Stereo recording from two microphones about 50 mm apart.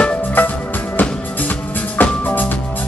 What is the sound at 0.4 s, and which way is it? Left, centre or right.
Music, left.